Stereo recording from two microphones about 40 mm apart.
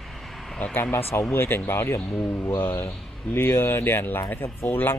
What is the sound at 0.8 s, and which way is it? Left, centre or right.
Speech, left.